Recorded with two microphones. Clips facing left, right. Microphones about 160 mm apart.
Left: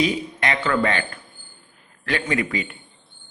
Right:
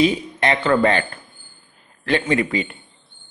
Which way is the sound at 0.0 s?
30° right (ahead or behind).